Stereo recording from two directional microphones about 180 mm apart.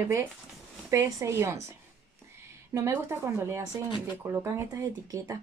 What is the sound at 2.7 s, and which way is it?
Speech, 15° right (ahead or behind).